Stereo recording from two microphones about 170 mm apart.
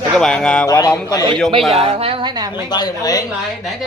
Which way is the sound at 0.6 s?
20° left (ahead or behind).